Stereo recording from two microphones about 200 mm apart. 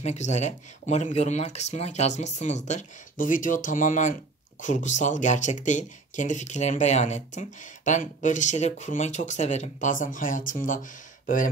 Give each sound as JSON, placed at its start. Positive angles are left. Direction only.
{"t": 0.0, "sound": "speech", "side_deg": 35}